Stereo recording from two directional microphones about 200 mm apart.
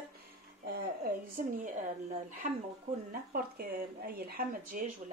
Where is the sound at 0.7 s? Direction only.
50° right (ahead or behind).